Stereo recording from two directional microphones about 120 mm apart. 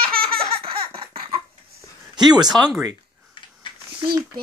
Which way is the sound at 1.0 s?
45° right (ahead or behind).